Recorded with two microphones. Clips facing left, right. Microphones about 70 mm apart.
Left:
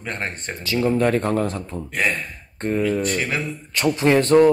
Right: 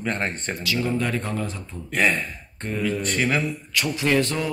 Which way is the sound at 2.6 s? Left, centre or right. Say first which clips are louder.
Left 7 dB; left.